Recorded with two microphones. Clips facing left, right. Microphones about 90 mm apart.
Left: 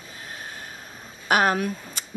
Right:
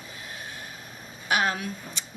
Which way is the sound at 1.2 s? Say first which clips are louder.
Left 5 dB; 45° left (ahead or behind).